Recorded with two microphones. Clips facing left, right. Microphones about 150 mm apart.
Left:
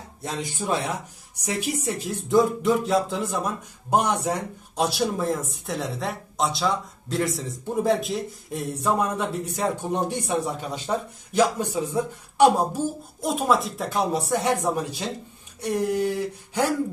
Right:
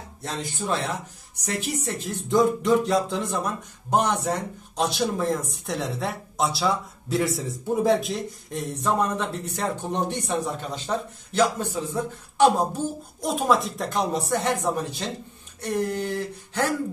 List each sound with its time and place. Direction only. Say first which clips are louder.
0.2 s speech: left 1 dB; 15° left (ahead or behind)
13.2 s speech: even; centre (ahead or behind)